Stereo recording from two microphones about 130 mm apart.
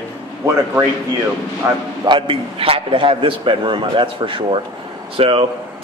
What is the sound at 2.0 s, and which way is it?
A man's voice, 40° right (ahead or behind).